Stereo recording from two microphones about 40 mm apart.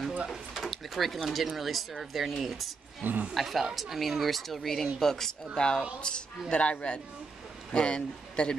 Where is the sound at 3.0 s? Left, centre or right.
Right.